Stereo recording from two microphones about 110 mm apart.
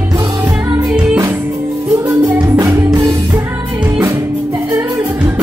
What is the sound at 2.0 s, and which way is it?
Music, 35° right (ahead or behind).